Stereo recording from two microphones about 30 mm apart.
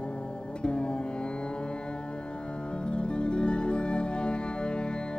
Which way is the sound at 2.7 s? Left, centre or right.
Left.